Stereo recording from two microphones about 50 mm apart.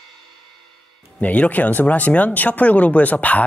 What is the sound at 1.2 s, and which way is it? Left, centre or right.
Speech, left.